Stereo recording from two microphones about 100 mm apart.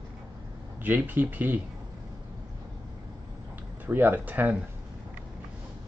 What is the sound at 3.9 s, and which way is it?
Speech, 20° right (ahead or behind).